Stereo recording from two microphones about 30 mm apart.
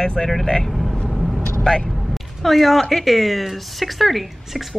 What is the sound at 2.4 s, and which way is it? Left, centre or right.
A woman's voice, centre.